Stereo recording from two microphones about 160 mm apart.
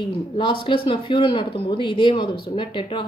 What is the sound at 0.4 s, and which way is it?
Speech, 30° left (ahead or behind).